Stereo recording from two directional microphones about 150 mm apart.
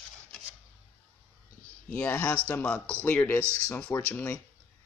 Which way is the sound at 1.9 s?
15° left (ahead or behind).